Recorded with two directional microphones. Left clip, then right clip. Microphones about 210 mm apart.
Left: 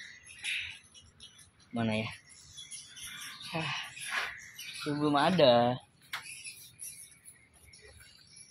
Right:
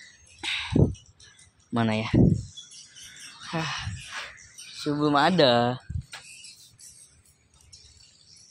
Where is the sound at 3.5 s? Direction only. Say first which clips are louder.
Right 5 dB; 25° right (ahead or behind).